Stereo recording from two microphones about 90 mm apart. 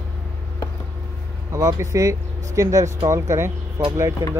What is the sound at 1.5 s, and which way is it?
Speech, 35° right (ahead or behind).